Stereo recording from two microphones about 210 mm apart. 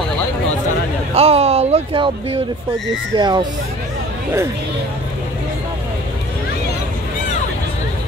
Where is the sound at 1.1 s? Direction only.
30° right (ahead or behind).